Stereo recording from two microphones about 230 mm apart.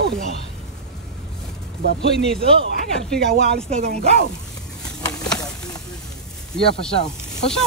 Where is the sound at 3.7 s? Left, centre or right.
Right.